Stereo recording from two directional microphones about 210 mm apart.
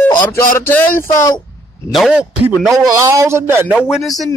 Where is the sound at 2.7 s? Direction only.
15° right (ahead or behind).